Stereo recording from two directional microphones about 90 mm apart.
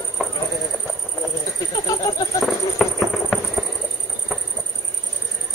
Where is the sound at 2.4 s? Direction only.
Centre (ahead or behind).